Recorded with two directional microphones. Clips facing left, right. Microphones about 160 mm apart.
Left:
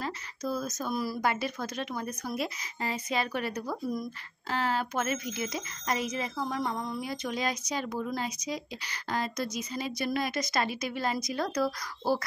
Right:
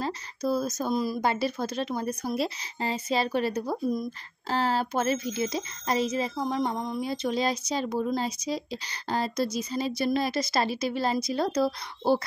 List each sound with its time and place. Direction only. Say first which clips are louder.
0.0 s speech: right 5 dB; 30° right (ahead or behind)